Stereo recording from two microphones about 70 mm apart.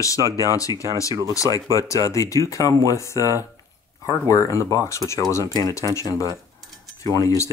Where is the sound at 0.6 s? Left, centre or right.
Left.